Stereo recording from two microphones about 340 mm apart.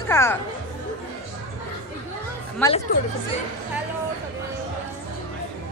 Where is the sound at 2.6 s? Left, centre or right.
Centre.